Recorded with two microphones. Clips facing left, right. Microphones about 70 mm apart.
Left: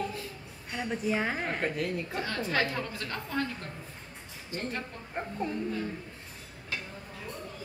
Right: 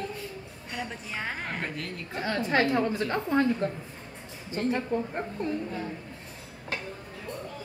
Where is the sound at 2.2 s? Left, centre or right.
Right.